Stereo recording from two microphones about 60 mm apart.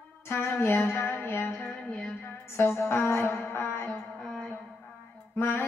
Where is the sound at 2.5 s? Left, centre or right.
Left.